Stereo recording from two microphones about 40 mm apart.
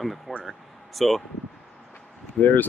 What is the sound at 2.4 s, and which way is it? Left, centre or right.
Speech, left.